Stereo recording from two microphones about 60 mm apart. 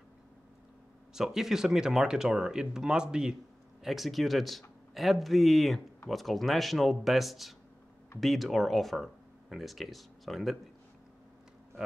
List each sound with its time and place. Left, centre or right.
1.1 s speech: centre
3.8 s speech: centre